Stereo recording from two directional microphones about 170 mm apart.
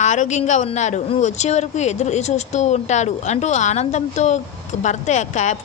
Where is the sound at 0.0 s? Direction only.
45° left (ahead or behind).